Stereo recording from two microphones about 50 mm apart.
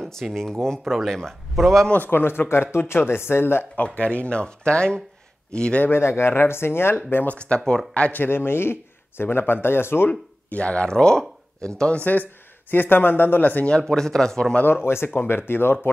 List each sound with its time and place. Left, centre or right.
0.0 s speech: centre
2.0 s speech: left
3.7 s speech: left
5.9 s speech: left
7.2 s speech: left
8.1 s speech: left
10.0 s speech: left
12.0 s speech: left
13.7 s speech: centre
15.1 s speech: left